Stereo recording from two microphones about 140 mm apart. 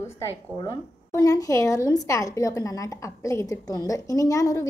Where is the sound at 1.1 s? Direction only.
25° left (ahead or behind).